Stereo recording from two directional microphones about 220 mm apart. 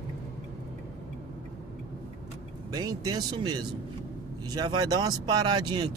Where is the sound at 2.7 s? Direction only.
15° right (ahead or behind).